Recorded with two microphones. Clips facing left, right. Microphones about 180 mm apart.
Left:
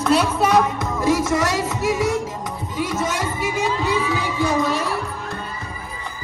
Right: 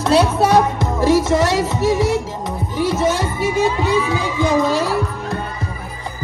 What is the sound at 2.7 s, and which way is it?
Speech, 30° right (ahead or behind).